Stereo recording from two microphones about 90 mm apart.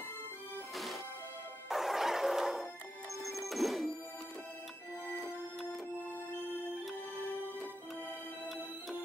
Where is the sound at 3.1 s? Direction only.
35° left (ahead or behind).